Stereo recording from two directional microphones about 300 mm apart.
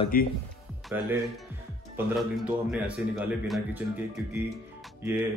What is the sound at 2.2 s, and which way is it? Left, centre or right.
Speech, centre.